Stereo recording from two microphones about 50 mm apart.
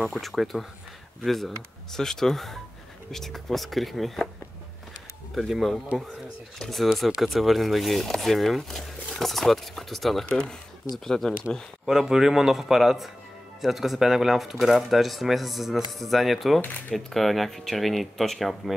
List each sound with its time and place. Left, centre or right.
0.0 s speech: centre
5.3 s speech: centre
10.2 s speech: centre
11.8 s a man's voice: centre